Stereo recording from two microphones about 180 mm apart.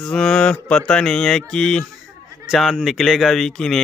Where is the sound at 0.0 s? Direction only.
5° left (ahead or behind).